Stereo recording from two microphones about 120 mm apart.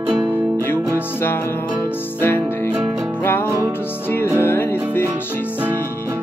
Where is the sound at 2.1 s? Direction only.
15° left (ahead or behind).